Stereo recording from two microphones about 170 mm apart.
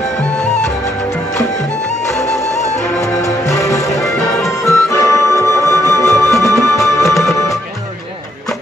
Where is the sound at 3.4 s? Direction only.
20° left (ahead or behind).